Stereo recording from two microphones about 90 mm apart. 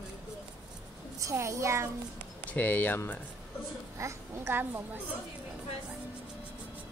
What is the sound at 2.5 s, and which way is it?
Speech, 20° left (ahead or behind).